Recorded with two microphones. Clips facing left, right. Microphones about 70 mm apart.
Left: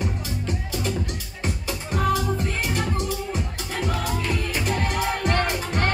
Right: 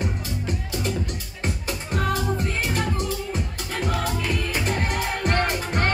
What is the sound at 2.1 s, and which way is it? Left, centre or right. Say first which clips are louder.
Music: even; right.